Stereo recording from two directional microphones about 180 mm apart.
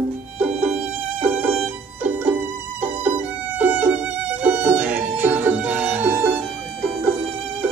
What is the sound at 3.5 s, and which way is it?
Violin, 10° right (ahead or behind).